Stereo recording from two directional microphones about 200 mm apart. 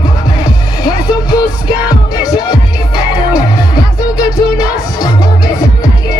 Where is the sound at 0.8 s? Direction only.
20° left (ahead or behind).